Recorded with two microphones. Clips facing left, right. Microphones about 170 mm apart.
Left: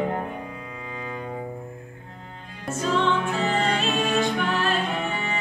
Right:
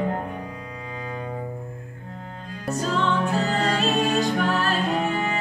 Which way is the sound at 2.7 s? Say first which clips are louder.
Left 1 dB; 40° right (ahead or behind).